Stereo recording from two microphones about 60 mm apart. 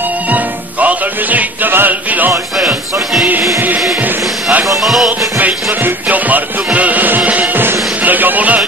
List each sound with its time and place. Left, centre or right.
0.3 s music: right
4.8 s music: centre
5.4 s music: right